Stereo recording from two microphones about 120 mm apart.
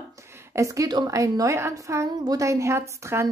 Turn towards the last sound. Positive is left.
turn(degrees=-20)  # may be behind; listen again after turning